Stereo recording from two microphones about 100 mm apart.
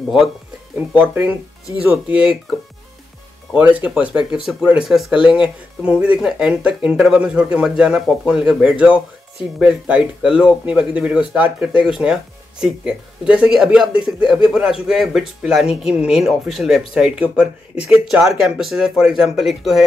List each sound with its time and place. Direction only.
0.9 s speech: 20° right (ahead or behind)
3.5 s speech: 15° right (ahead or behind)
18.2 s speech: centre (ahead or behind)